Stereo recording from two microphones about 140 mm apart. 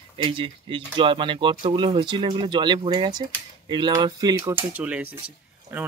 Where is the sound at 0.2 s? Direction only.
35° right (ahead or behind).